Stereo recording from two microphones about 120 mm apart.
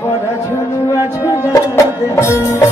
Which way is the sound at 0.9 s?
25° left (ahead or behind).